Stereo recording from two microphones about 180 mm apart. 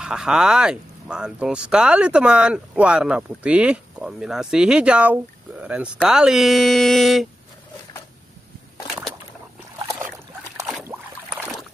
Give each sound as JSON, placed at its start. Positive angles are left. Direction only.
{"t": 0.0, "sound": "speech", "side_deg": -5}
{"t": 10.7, "sound": "rowboat", "side_deg": -5}